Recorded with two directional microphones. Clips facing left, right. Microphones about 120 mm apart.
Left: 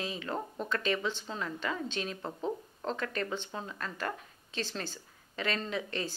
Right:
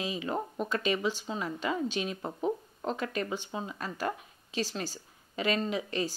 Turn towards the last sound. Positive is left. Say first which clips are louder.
# right 4 dB
turn(degrees=-15)  # may be behind; listen again after turning